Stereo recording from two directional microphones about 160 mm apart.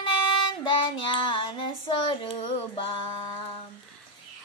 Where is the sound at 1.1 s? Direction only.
30° left (ahead or behind).